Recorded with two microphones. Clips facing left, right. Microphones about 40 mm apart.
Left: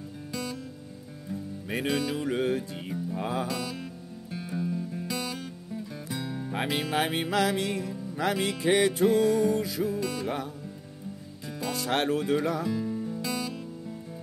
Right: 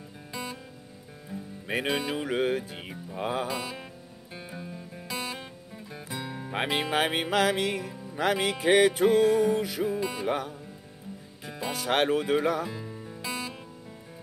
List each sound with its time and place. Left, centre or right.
0.3 s music: right
1.7 s music: right; by 5.0 s centre
5.0 s music: right
6.5 s music: right
9.0 s music: right
9.8 s music: right
11.4 s speech: right
12.6 s music: centre